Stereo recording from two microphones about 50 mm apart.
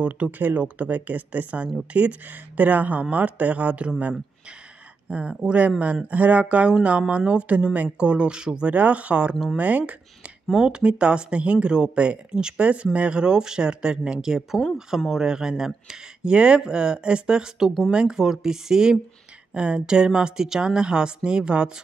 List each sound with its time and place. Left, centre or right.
0.0 s speech: right
5.1 s speech: right
8.7 s speech: right
9.3 s speech: centre
9.6 s speech: right
10.5 s speech: centre